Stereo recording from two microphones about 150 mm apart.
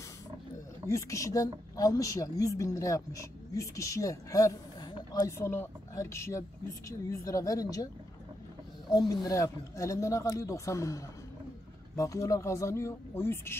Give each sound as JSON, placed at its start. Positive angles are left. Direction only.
{"t": 0.8, "sound": "a woman's voice", "side_deg": 20}
{"t": 5.4, "sound": "a woman's voice", "side_deg": 15}
{"t": 8.9, "sound": "a woman's voice", "side_deg": 25}